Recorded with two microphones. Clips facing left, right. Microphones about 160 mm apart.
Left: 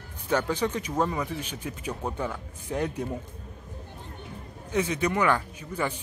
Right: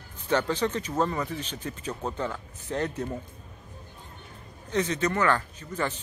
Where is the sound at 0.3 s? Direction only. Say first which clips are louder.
Even; 10° left (ahead or behind).